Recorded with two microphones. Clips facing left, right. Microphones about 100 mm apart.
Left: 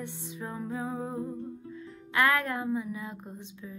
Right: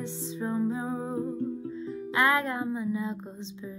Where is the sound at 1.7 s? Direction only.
25° right (ahead or behind).